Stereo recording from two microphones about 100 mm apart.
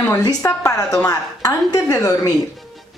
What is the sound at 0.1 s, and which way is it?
A woman's voice, 35° left (ahead or behind).